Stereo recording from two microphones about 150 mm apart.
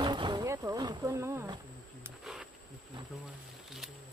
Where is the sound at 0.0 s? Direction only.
30° right (ahead or behind).